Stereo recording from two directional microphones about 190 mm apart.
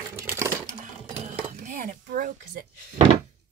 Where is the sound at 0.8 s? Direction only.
40° right (ahead or behind).